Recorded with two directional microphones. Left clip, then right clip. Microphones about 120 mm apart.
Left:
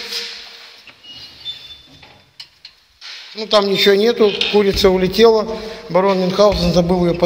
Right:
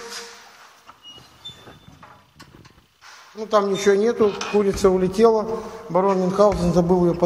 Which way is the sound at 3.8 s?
35° left (ahead or behind).